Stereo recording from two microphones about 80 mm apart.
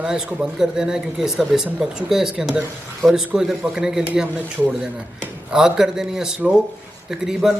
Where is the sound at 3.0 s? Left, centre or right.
Centre.